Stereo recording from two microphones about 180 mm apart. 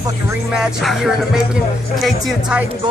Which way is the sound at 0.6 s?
Centre (ahead or behind).